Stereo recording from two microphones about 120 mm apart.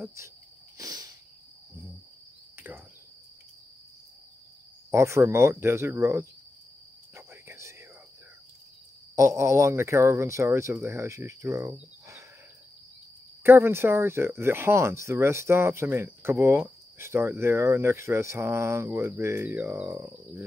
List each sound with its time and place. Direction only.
0.0 s speech: 25° right (ahead or behind)
0.7 s a sound: 30° right (ahead or behind)
4.9 s speech: 25° right (ahead or behind)
7.2 s insect: 25° right (ahead or behind)
9.1 s speech: 25° right (ahead or behind)
13.4 s speech: 20° right (ahead or behind)